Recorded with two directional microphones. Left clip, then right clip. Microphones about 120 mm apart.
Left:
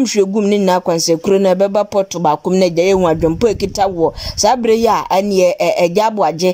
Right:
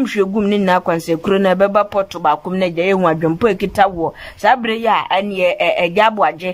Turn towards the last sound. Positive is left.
turn(degrees=40)  # may be behind; listen again after turning